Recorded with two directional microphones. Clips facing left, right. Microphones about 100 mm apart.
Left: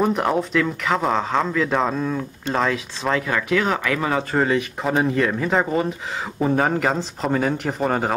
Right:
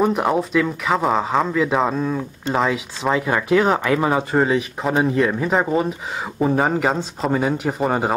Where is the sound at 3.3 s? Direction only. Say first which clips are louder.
Right 7 dB; 25° right (ahead or behind).